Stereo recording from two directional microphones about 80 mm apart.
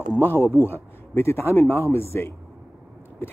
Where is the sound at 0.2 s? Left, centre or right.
Left.